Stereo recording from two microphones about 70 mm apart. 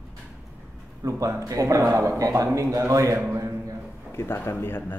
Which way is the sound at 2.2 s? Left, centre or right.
Right.